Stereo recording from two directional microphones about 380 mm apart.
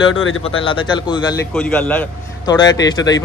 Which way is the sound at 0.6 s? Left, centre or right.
Centre.